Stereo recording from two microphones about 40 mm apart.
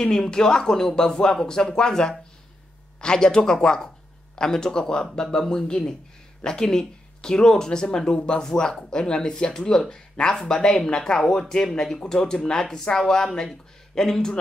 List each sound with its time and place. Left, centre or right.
0.0 s speech: centre